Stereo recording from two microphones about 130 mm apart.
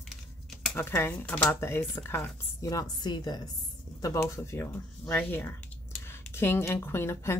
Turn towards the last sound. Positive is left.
turn(degrees=20)  # may be behind; listen again after turning